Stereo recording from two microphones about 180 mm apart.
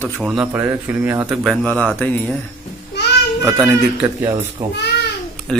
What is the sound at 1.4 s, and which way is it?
Speech, centre (ahead or behind).